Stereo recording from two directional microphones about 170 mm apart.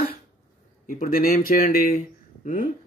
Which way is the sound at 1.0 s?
60° left (ahead or behind).